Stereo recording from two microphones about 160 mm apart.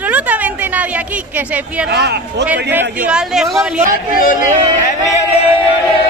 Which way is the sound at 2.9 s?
5° right (ahead or behind).